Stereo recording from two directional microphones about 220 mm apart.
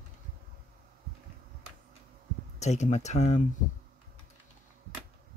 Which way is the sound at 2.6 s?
30° left (ahead or behind).